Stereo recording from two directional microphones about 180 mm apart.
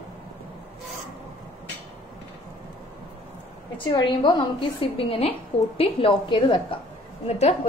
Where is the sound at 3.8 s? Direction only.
25° left (ahead or behind).